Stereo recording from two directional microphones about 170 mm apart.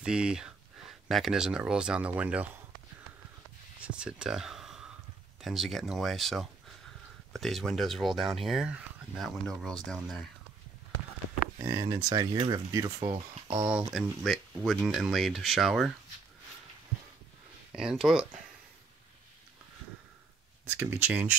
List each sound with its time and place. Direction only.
0.0 s speech: 5° right (ahead or behind)
3.8 s speech: 5° right (ahead or behind)
11.6 s speech: 20° right (ahead or behind)
13.7 s speech: 5° right (ahead or behind)
17.7 s speech: centre (ahead or behind)
20.6 s speech: 10° right (ahead or behind)